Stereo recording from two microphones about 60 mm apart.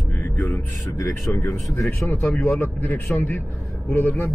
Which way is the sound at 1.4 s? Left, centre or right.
Left.